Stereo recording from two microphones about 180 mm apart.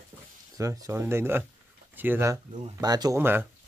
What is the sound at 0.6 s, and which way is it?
Speech, 15° right (ahead or behind).